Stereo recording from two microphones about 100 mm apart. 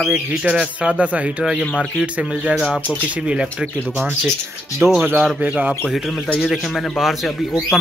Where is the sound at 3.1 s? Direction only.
10° right (ahead or behind).